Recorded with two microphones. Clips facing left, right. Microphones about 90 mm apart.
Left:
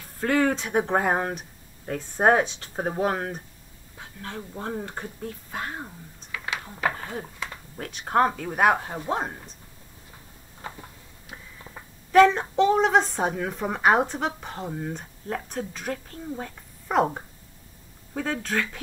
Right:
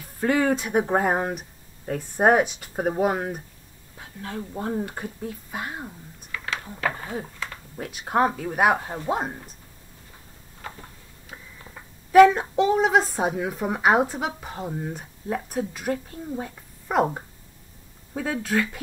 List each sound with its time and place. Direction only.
0.2 s speech: 15° right (ahead or behind)
4.7 s speech: 10° right (ahead or behind)
6.3 s a sound: 15° left (ahead or behind)
6.9 s a woman's voice: 10° right (ahead or behind)
10.6 s a sound: 5° left (ahead or behind)
12.1 s a woman's voice: 10° right (ahead or behind)